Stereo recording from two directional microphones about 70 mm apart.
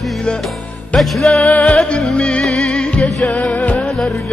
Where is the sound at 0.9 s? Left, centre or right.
Centre.